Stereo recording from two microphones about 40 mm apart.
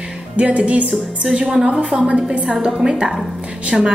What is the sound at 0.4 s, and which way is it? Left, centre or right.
Speech, right.